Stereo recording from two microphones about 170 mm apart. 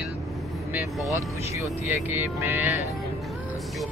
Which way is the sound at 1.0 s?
20° right (ahead or behind).